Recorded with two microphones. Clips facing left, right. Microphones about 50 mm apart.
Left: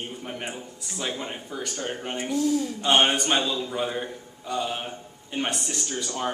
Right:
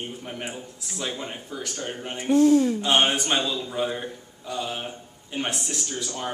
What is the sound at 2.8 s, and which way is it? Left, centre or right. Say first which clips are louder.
A man's voice: left 1 dB; centre.